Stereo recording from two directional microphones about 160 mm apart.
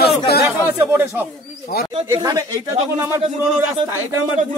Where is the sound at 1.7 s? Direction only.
70° left (ahead or behind).